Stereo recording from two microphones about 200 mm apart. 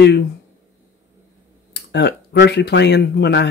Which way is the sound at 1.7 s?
60° left (ahead or behind).